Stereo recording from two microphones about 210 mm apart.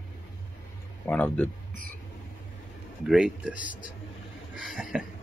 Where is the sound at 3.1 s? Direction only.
Centre (ahead or behind).